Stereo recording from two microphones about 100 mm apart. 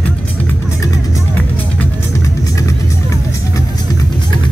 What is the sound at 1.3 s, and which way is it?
Music, 15° left (ahead or behind).